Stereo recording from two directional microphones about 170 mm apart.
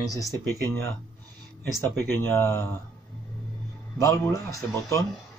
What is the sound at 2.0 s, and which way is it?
Speech, 15° left (ahead or behind).